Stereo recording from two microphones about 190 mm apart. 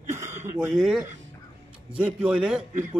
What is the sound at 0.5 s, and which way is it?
Speech, centre (ahead or behind).